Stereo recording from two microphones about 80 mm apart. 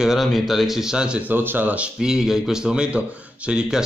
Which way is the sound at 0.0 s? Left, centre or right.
Centre.